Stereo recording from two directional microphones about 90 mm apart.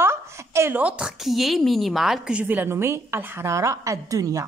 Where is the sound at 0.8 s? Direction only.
10° right (ahead or behind).